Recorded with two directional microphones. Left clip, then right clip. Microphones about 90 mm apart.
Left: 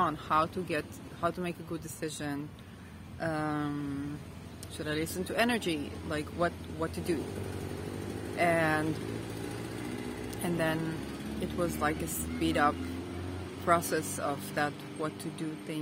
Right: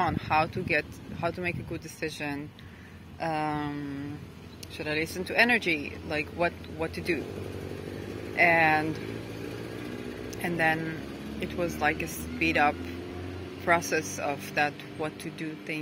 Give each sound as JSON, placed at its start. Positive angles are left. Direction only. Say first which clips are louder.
{"t": 0.0, "sound": "speech", "louder": "right 2 dB", "side_deg": 30}
{"t": 4.7, "sound": "speech", "louder": "right 4 dB", "side_deg": 30}
{"t": 8.4, "sound": "speech", "louder": "right 6 dB", "side_deg": 25}
{"t": 10.4, "sound": "speech", "louder": "right 6 dB", "side_deg": 30}
{"t": 12.0, "sound": "speech", "louder": "right 4 dB", "side_deg": 30}